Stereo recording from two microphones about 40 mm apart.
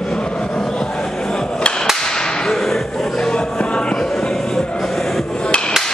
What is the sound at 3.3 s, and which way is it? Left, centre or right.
Music, left.